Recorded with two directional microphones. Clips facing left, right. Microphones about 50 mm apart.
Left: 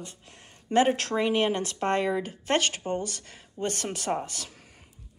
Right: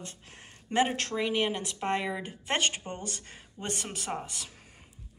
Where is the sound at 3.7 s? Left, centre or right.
Centre.